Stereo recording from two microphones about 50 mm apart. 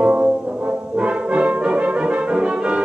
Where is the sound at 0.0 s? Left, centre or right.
Right.